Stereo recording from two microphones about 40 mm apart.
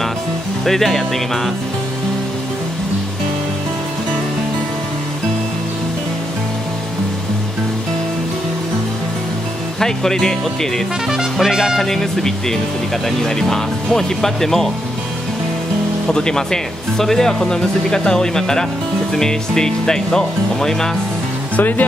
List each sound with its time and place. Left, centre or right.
0.7 s music: centre
9.8 s speech: centre
11.3 s speech: centre
11.8 s speech: centre
16.1 s speech: centre
21.5 s speech: left